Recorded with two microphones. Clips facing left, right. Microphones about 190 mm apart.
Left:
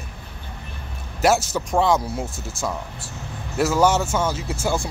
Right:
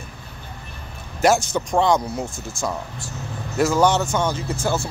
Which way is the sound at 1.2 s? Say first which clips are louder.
Right 1 dB; 5° left (ahead or behind).